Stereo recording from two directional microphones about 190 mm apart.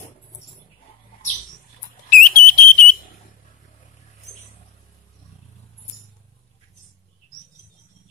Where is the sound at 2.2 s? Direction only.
45° left (ahead or behind).